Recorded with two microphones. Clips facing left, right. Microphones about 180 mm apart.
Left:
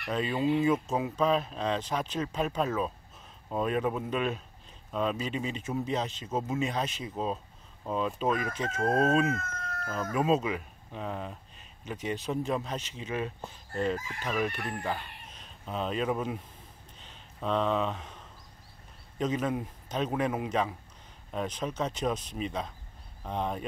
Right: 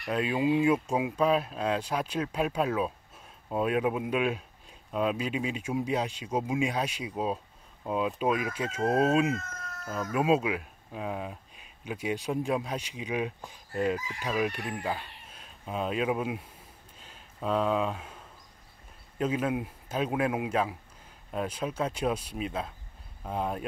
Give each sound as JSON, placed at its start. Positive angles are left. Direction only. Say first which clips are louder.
{"t": 0.0, "sound": "speech", "louder": "right 1 dB", "side_deg": -5}
{"t": 9.3, "sound": "cat", "louder": "even", "side_deg": 55}
{"t": 10.1, "sound": "speech", "louder": "right 2 dB", "side_deg": -10}
{"t": 13.9, "sound": "chicken", "louder": "right 1 dB", "side_deg": 50}
{"t": 14.2, "sound": "speech", "louder": "right 1 dB", "side_deg": -10}
{"t": 17.0, "sound": "a sound", "louder": "right 1 dB", "side_deg": -5}
{"t": 19.1, "sound": "speech", "louder": "right 1 dB", "side_deg": -10}